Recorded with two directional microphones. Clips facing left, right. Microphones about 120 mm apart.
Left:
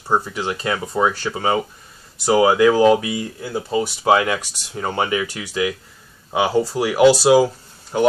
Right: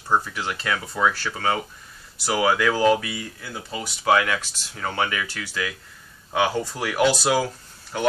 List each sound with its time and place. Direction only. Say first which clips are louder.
0.1 s speech: left 3 dB; 20° left (ahead or behind)